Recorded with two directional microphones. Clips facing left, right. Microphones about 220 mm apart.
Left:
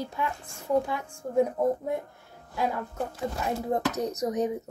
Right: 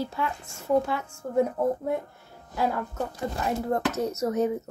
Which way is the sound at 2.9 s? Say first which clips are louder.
Right 1 dB; 15° left (ahead or behind).